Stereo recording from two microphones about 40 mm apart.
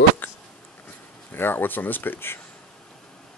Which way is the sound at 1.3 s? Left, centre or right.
Left.